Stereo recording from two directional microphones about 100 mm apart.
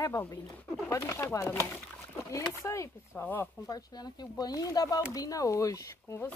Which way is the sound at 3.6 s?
40° left (ahead or behind).